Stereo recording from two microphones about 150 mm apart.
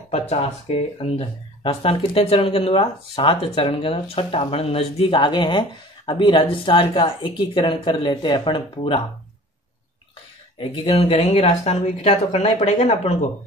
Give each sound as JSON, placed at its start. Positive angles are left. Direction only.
{"t": 0.1, "sound": "speech", "side_deg": 45}
{"t": 10.6, "sound": "speech", "side_deg": 35}